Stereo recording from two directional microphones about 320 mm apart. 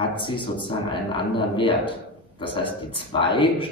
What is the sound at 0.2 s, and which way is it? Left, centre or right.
A man's voice, centre.